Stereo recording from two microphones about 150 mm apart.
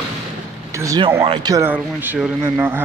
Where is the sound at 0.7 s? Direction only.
20° right (ahead or behind).